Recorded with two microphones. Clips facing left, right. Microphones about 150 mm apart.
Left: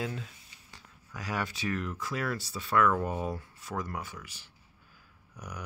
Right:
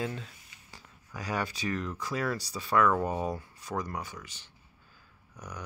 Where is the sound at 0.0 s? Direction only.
5° left (ahead or behind).